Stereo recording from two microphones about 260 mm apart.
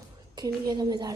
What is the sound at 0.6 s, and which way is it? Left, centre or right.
Speech, centre.